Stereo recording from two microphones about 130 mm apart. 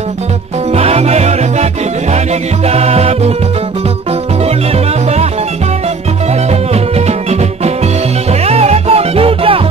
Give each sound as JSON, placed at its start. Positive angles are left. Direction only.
{"t": 0.7, "sound": "music", "side_deg": -50}
{"t": 2.7, "sound": "music", "side_deg": -50}
{"t": 6.7, "sound": "music", "side_deg": -55}